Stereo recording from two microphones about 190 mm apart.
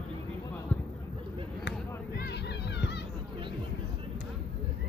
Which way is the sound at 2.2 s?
60° left (ahead or behind).